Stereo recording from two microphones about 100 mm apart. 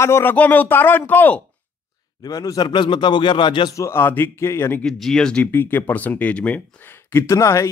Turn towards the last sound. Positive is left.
turn(degrees=30)  # may be behind; listen again after turning